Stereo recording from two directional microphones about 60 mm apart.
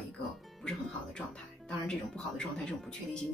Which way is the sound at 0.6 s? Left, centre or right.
Centre.